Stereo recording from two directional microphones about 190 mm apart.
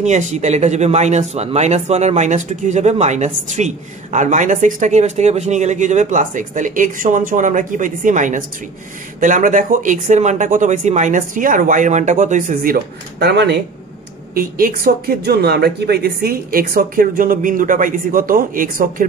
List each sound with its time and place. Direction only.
0.0 s speech: 40° right (ahead or behind); by 13.6 s 65° right (ahead or behind)
14.3 s speech: 50° right (ahead or behind)